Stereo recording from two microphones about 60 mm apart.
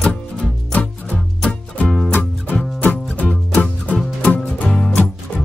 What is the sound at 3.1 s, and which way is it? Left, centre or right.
Music, left.